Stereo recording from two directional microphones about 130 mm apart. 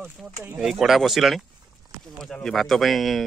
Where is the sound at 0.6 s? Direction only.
Centre (ahead or behind).